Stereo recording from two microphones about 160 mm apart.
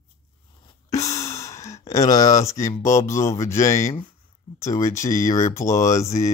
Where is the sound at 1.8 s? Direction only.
20° left (ahead or behind).